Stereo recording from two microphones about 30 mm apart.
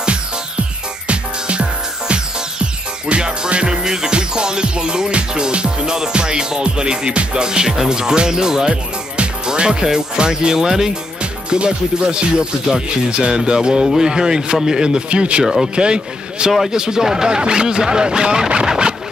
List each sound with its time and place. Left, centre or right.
1.0 s music: right
4.1 s speech: right
10.6 s speech: centre
11.5 s speech: right
15.0 s speech: right
15.4 s speech: centre
15.7 s speech: right
18.5 s scratch: right